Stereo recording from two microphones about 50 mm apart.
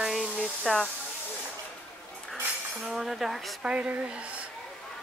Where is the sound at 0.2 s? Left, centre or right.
Centre.